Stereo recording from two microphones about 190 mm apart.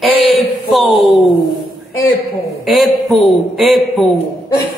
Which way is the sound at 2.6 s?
Centre (ahead or behind).